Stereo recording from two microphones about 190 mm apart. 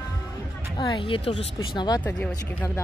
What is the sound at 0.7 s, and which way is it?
Speech, 25° left (ahead or behind).